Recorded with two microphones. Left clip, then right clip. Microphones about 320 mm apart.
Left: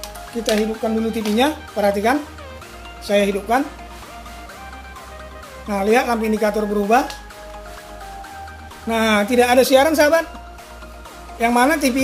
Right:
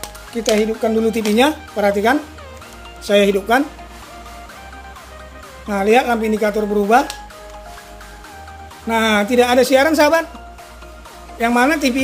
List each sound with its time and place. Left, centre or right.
0.3 s speech: centre
5.7 s speech: centre
8.8 s speech: centre
11.3 s speech: centre